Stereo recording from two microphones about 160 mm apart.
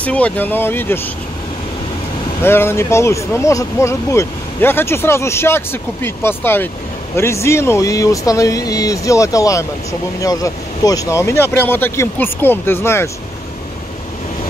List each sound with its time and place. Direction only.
0.0 s speech: 10° left (ahead or behind)
2.4 s speech: 15° left (ahead or behind)